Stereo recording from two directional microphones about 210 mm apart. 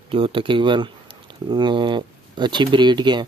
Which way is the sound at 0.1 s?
25° right (ahead or behind).